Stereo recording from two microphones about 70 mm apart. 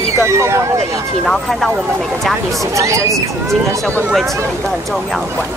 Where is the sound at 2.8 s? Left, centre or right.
Right.